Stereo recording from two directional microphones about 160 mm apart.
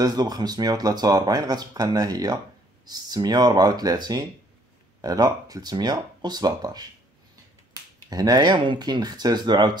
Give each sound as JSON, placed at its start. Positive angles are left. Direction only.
{"t": 0.0, "sound": "speech", "side_deg": -25}
{"t": 8.1, "sound": "speech", "side_deg": -25}